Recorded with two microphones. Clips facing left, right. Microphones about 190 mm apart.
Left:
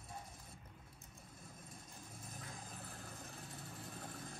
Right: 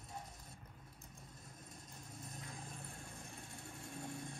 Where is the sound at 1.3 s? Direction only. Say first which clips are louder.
Left 4 dB; 25° left (ahead or behind).